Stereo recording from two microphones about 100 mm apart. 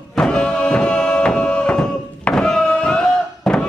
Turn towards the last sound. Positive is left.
turn(degrees=5)  # may be behind; listen again after turning